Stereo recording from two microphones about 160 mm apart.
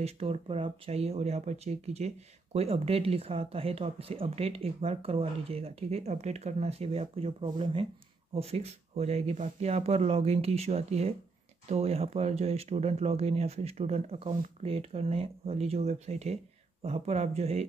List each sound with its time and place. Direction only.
0.0 s speech: 40° right (ahead or behind)